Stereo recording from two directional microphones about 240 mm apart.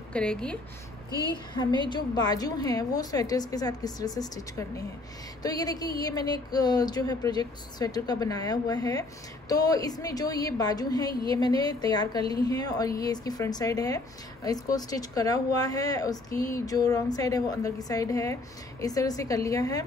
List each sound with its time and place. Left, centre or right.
0.1 s a woman's voice: centre
1.3 s a woman's voice: centre